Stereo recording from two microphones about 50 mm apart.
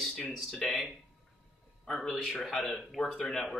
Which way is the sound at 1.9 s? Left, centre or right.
Centre.